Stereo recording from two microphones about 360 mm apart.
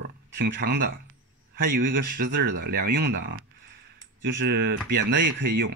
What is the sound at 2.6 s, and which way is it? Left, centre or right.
A man's voice, right.